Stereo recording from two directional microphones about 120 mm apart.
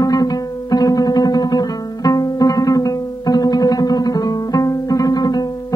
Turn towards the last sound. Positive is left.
turn(degrees=35)  # may be behind; listen again after turning